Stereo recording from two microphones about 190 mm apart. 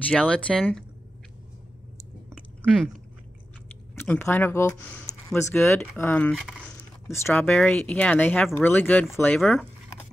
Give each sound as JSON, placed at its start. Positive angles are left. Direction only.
{"t": 0.1, "sound": "speech", "side_deg": 5}
{"t": 3.9, "sound": "speech", "side_deg": 10}
{"t": 7.1, "sound": "speech", "side_deg": 10}